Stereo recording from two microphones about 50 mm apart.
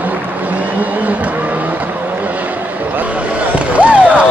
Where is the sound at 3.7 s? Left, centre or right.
Right.